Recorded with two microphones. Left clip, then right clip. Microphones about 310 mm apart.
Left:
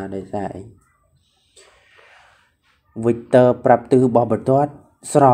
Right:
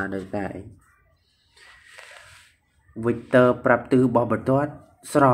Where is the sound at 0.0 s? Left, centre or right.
Centre.